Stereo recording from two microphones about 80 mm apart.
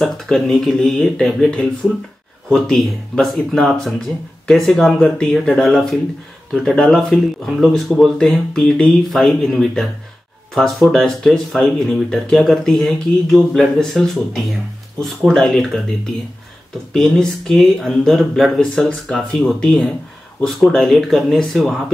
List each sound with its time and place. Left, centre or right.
0.0 s speech: centre
4.9 s speech: centre
16.9 s speech: centre